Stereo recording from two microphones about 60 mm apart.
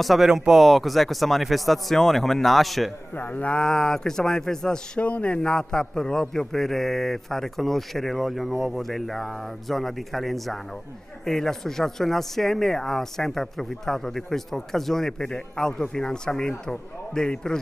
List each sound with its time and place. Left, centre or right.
0.0 s a man's voice: centre
3.2 s speech: left
3.5 s speech: centre
5.0 s a man's voice: left